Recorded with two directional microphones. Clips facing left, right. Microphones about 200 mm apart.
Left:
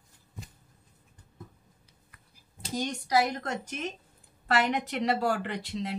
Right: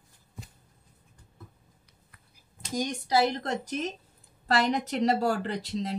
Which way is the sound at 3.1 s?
30° right (ahead or behind).